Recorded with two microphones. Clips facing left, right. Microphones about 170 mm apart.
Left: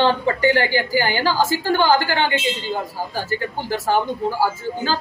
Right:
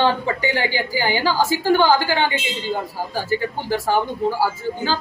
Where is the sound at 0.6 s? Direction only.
10° right (ahead or behind).